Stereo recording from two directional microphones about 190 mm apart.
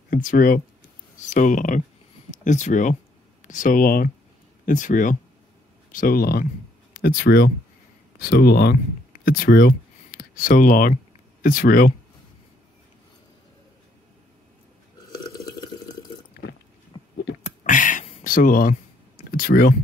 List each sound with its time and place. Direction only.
0.1 s speech: 45° left (ahead or behind)
15.3 s drip: 20° left (ahead or behind)
17.4 s a sound: 40° left (ahead or behind)
19.3 s speech: 50° left (ahead or behind)